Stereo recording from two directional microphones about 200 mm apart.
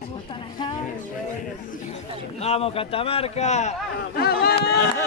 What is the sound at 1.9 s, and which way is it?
Speech, 30° left (ahead or behind).